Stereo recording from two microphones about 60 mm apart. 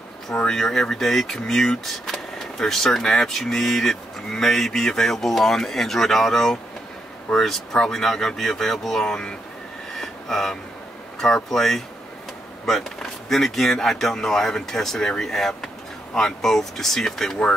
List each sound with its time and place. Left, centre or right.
0.3 s speech: centre
0.6 s speech: centre
9.9 s vehicle: centre
11.1 s speech: centre
13.3 s speech: centre